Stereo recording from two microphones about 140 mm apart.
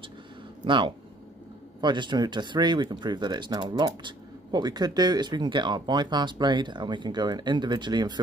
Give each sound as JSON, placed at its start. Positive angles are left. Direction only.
{"t": 0.7, "sound": "speech", "side_deg": -35}